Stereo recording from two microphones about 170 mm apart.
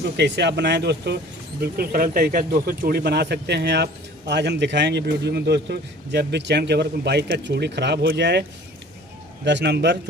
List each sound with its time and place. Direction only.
0.0 s speech: 85° right
9.4 s a man's voice: 90° right